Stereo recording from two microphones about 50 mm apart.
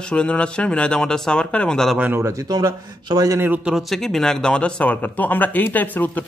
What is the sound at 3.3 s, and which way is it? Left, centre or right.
Speech, right.